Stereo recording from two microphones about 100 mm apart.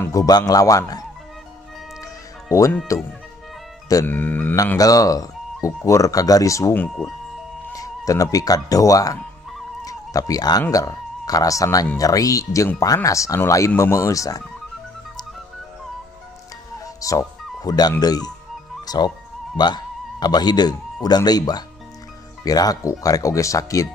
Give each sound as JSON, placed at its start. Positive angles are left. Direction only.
{"t": 0.1, "sound": "speech", "side_deg": 40}
{"t": 2.9, "sound": "speech", "side_deg": 35}
{"t": 4.0, "sound": "speech", "side_deg": 20}
{"t": 4.7, "sound": "speech", "side_deg": 35}
{"t": 6.7, "sound": "speech", "side_deg": 15}
{"t": 7.7, "sound": "speech", "side_deg": 35}
{"t": 9.8, "sound": "a sound", "side_deg": 35}
{"t": 10.7, "sound": "speech", "side_deg": 40}
{"t": 16.8, "sound": "music", "side_deg": 35}
{"t": 17.6, "sound": "speech", "side_deg": 40}